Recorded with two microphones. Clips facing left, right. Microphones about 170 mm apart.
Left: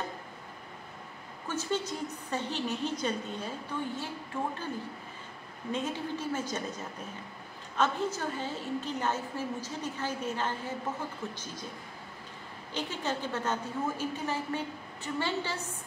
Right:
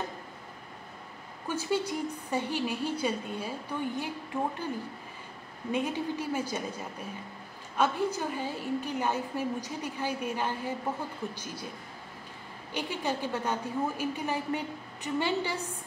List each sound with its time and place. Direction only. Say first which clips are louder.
1.5 s a woman's voice: right 3 dB; 10° right (ahead or behind)
5.7 s a woman's voice: right 3 dB; 10° right (ahead or behind)
12.7 s a woman's voice: right 2 dB; 15° right (ahead or behind)